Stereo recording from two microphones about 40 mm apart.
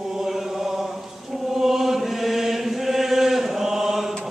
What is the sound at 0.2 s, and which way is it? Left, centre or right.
Chant, centre.